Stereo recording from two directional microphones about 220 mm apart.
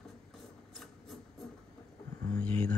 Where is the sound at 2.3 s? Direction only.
5° left (ahead or behind).